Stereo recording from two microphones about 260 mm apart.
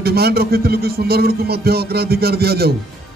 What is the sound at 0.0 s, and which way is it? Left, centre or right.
Speech, right.